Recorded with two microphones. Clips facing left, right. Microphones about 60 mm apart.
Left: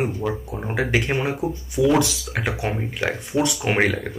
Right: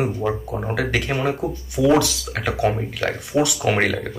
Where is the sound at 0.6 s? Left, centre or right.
Centre.